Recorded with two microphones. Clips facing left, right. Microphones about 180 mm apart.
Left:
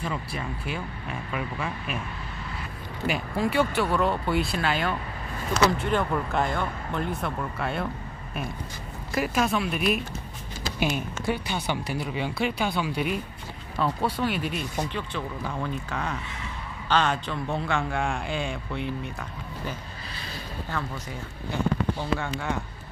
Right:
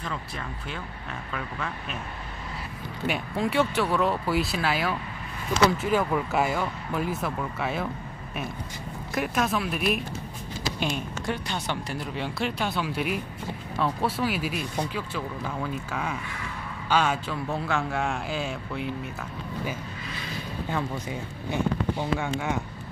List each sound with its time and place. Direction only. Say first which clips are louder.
0.0 s speech: left 3 dB; 10° left (ahead or behind)
3.1 s speech: left 1 dB; centre (ahead or behind)
9.1 s speech: left 1 dB; centre (ahead or behind)
20.7 s speech: right 3 dB; 20° right (ahead or behind)